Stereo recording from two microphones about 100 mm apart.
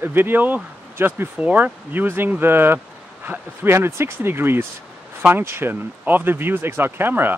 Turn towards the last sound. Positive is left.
turn(degrees=-20)  # may be behind; listen again after turning